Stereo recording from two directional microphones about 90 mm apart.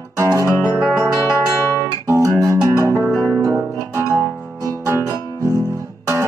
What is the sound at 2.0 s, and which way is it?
Music, 30° right (ahead or behind).